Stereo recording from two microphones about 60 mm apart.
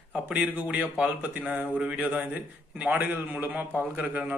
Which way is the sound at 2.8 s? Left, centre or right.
Right.